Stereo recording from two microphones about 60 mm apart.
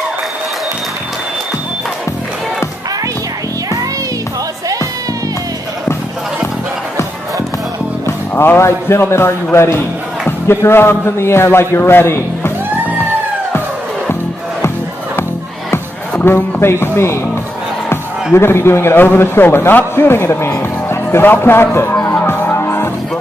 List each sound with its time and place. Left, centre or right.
8.4 s a man's voice: left
16.3 s a man's voice: left
22.0 s music: left